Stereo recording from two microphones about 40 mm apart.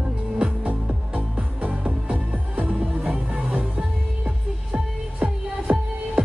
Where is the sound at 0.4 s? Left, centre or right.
Right.